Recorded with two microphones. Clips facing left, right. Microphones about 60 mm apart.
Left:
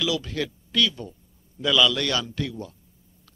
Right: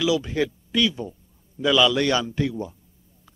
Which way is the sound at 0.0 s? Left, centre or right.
Right.